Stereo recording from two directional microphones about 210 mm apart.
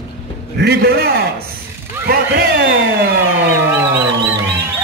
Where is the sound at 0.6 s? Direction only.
50° right (ahead or behind).